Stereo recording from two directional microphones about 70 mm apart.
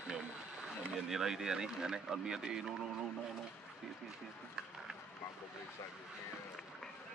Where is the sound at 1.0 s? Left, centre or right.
Centre.